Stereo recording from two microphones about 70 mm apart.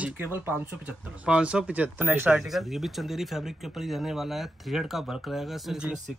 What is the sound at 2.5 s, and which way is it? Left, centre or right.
Speech, centre.